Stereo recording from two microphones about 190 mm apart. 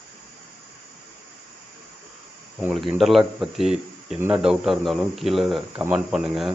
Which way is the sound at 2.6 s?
Centre (ahead or behind).